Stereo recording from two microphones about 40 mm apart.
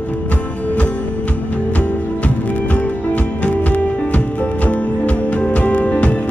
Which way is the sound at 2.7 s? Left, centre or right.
Left.